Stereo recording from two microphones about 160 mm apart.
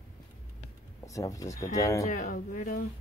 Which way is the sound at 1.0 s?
20° left (ahead or behind).